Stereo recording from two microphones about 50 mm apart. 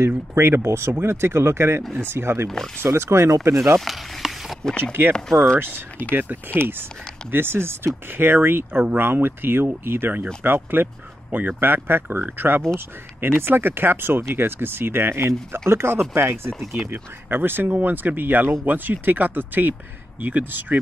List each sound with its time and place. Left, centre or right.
0.3 s speech: right
1.8 s speech: centre
2.0 s speech: right
3.8 s a sound: centre
4.6 s speech: centre
5.6 s speech: right